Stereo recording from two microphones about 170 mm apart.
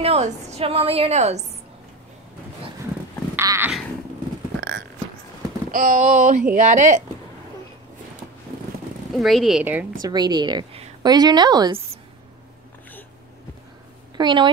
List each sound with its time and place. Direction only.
0.0 s a woman's voice: 35° right (ahead or behind)
3.3 s a sound: 15° right (ahead or behind)
5.7 s speech: 50° right (ahead or behind)
9.1 s speech: centre (ahead or behind)
10.0 s a woman's voice: 25° right (ahead or behind)
14.1 s a woman's voice: 25° right (ahead or behind)